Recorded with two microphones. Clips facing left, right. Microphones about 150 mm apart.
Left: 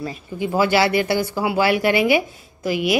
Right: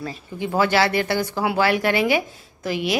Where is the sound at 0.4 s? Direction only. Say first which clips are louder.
Left 2 dB; 10° left (ahead or behind).